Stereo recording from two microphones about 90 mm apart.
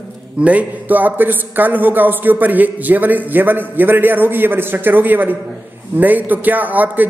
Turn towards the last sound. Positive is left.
turn(degrees=-20)  # may be behind; listen again after turning